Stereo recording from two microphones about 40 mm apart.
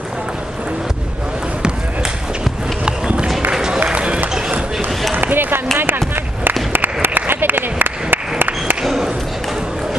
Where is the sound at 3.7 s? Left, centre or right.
Right.